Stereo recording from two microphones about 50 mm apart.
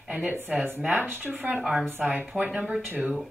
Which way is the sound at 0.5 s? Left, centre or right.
Right.